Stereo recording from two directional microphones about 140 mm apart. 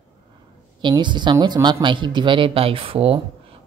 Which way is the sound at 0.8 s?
35° right (ahead or behind).